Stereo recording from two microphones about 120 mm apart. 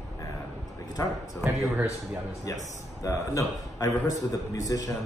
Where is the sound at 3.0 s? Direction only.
30° left (ahead or behind).